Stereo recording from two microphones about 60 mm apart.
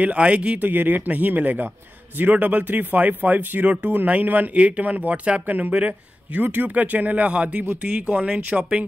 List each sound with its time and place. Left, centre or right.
0.0 s speech: right
0.6 s speech: right
6.4 s speech: right; by 8.8 s centre